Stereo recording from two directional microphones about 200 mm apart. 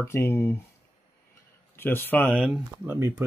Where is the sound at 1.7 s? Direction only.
10° left (ahead or behind).